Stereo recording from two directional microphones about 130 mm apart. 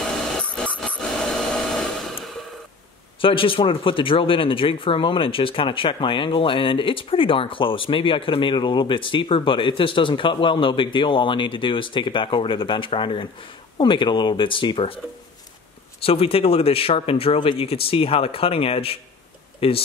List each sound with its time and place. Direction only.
0.0 s a sound: 5° left (ahead or behind)
3.2 s speech: 40° left (ahead or behind)
16.0 s speech: 45° left (ahead or behind)